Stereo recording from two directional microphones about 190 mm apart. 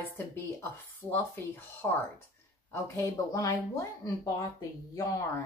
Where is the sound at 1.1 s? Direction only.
10° left (ahead or behind).